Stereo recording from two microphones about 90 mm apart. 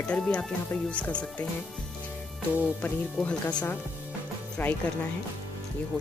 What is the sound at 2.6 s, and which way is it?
Speech, 20° left (ahead or behind).